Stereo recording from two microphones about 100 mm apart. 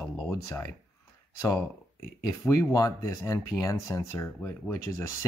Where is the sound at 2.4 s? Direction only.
35° left (ahead or behind).